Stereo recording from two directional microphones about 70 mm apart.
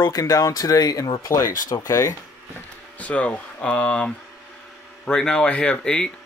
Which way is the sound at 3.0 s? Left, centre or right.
Centre.